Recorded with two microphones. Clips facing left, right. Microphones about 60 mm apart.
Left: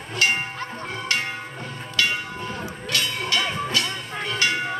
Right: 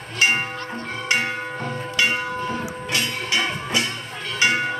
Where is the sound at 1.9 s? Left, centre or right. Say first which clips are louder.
Right 2 dB; right.